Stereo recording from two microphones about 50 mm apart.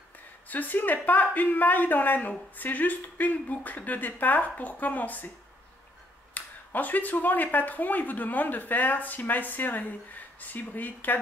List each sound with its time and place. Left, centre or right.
0.5 s a woman's voice: left
6.3 s a woman's voice: left